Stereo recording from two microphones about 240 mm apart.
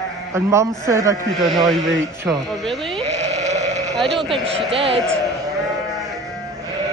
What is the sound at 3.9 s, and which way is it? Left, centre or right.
Speech, centre.